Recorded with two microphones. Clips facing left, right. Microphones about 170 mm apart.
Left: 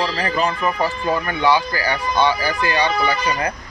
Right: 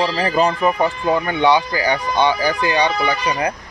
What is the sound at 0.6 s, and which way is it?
Speech, 20° right (ahead or behind).